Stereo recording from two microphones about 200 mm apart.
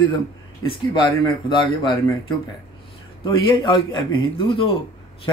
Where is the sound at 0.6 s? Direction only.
25° left (ahead or behind).